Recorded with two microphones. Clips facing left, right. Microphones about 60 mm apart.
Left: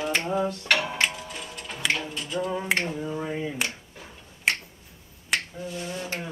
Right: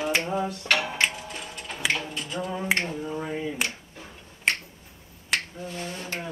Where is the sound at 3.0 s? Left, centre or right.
Centre.